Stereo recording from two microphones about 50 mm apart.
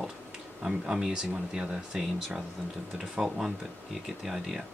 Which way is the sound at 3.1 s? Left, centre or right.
Centre.